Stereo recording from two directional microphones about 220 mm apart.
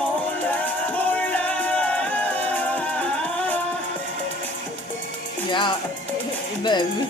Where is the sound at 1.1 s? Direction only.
5° left (ahead or behind).